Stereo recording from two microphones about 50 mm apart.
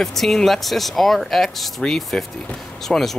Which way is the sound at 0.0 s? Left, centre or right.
Centre.